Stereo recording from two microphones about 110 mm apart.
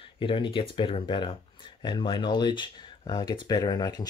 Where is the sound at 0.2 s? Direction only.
50° left (ahead or behind).